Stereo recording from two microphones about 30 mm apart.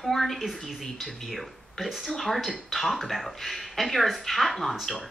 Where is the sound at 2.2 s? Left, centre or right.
Centre.